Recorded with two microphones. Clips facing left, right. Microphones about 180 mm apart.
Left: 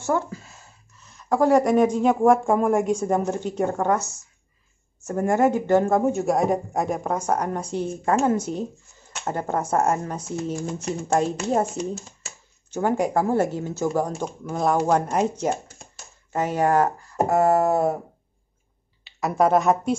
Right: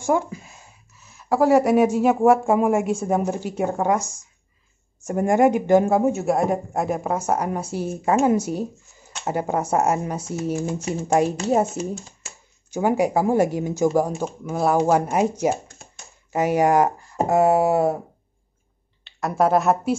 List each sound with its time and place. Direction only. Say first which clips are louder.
0.0 s speech: right 3 dB; 15° right (ahead or behind)
15.7 s a sound: even; 5° left (ahead or behind)
16.3 s speech: right 3 dB; 10° right (ahead or behind)
19.0 s speech: even; centre (ahead or behind)